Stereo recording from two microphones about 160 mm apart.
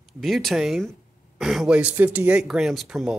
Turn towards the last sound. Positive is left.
turn(degrees=0)  # may be behind; listen again after turning